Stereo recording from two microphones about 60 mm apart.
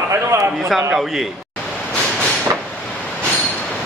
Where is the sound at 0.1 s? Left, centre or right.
Right.